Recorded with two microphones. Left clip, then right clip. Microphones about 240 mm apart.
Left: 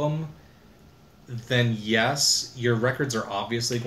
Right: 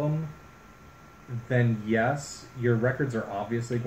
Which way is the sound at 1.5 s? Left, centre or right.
Centre.